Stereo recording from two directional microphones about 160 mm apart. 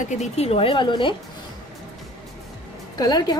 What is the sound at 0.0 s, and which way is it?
A woman's voice, 45° left (ahead or behind).